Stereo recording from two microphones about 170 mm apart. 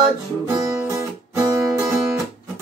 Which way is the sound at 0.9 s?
20° right (ahead or behind).